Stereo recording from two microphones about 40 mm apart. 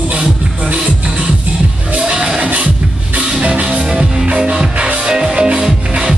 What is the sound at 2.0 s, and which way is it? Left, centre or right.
Music, right.